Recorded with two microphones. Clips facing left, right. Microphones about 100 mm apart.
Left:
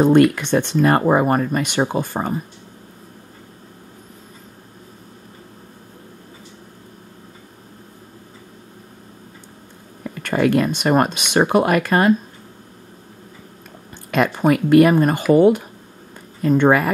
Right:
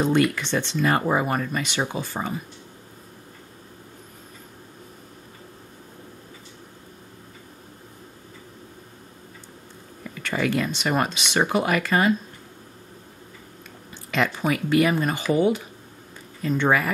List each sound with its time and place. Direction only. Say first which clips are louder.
0.0 s speech: left 8 dB; 50° left (ahead or behind)
10.0 s speech: left 7 dB; 45° left (ahead or behind)
14.1 s speech: left 7 dB; 50° left (ahead or behind)